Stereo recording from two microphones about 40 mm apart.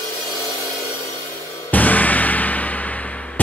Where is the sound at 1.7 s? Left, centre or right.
Left.